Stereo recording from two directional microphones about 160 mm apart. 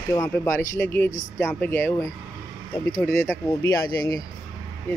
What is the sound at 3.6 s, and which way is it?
Speech, 25° left (ahead or behind).